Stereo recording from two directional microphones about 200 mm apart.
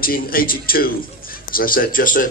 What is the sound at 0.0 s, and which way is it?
A man's voice, 45° left (ahead or behind).